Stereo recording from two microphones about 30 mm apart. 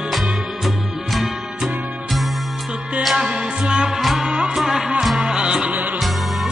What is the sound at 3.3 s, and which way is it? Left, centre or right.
Music, right.